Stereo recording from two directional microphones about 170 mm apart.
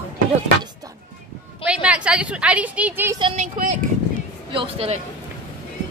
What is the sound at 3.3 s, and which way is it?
Speech, 50° right (ahead or behind).